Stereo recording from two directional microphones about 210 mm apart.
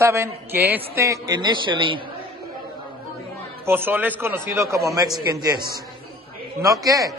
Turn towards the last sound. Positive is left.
turn(degrees=-15)  # may be behind; listen again after turning